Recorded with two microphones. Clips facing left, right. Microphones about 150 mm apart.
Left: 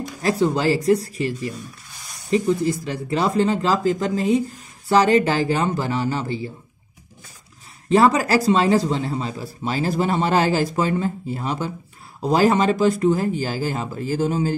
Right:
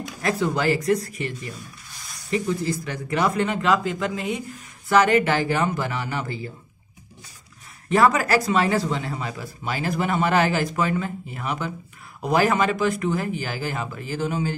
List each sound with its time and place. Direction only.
0.2 s speech: 30° left (ahead or behind)
7.9 s speech: 30° left (ahead or behind)